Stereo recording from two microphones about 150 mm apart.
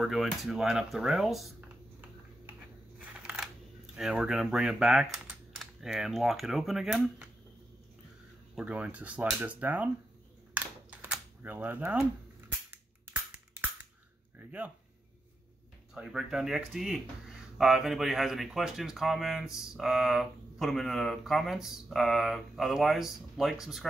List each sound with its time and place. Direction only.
0.0 s speech: centre (ahead or behind)
3.0 s a sound: 10° right (ahead or behind)
3.9 s speech: 5° right (ahead or behind)
8.5 s speech: 10° right (ahead or behind)
10.5 s typing: 10° right (ahead or behind)
12.7 s a sound: 15° right (ahead or behind)
15.9 s speech: 5° right (ahead or behind)